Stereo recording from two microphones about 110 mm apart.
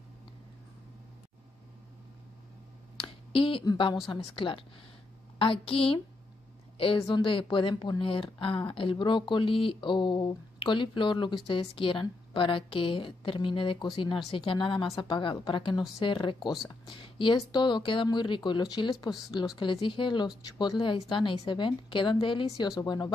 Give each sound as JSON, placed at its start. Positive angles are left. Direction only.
{"t": 3.0, "sound": "a sound", "side_deg": 50}
{"t": 3.6, "sound": "a woman's voice", "side_deg": 45}
{"t": 7.0, "sound": "speech", "side_deg": 45}